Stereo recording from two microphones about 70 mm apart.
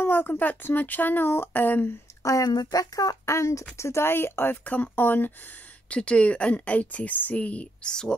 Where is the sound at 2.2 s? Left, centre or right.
Left.